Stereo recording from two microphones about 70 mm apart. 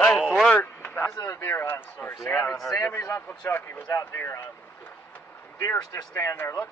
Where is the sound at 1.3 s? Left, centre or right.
Left.